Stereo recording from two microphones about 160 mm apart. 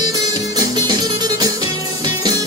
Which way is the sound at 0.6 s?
25° right (ahead or behind).